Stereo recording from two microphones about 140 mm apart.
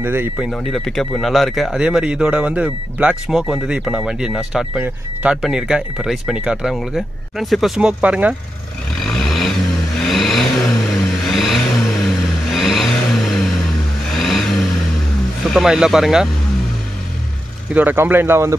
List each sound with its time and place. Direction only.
0.0 s a man's voice: 15° right (ahead or behind)
0.4 s speech: centre (ahead or behind)
9.0 s vehicle: centre (ahead or behind)
15.4 s speech: centre (ahead or behind)
17.7 s a man's voice: 15° right (ahead or behind)